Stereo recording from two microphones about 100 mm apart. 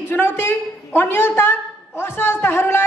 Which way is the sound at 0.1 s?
25° left (ahead or behind).